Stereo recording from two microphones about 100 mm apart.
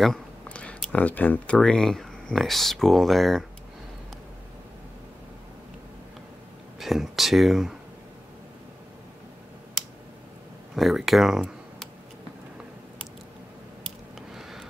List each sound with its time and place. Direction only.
0.0 s speech: 5° left (ahead or behind)
6.8 s speech: centre (ahead or behind)
10.8 s speech: centre (ahead or behind)
14.3 s a sound: 5° right (ahead or behind)